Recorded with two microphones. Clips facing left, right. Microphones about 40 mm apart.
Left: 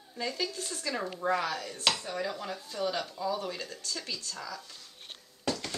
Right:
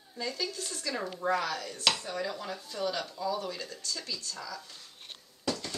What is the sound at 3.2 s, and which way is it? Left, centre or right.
Speech, centre.